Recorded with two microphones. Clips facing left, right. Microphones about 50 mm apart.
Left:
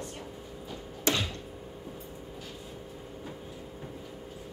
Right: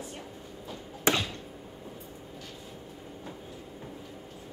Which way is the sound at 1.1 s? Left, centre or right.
Right.